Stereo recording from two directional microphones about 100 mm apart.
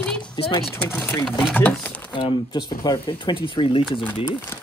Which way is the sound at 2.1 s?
50° left (ahead or behind).